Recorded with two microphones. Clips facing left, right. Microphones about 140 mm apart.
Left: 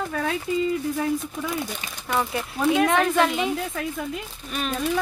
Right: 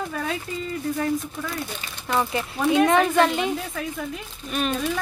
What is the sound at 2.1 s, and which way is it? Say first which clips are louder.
Speech: right 1 dB; centre (ahead or behind).